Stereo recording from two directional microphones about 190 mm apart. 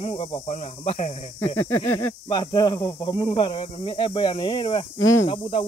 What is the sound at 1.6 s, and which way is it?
Speech, 10° left (ahead or behind).